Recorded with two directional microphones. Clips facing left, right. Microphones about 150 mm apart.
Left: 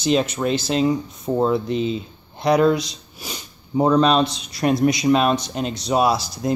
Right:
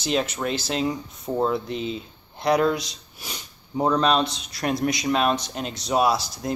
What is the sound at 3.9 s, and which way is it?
Speech, centre (ahead or behind).